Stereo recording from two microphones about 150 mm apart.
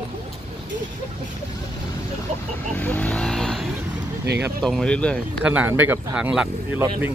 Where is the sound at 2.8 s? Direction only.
10° left (ahead or behind).